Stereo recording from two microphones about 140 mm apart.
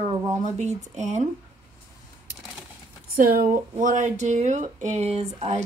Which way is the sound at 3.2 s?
90° right.